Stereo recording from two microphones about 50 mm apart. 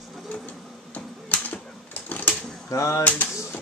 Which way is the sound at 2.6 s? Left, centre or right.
Left.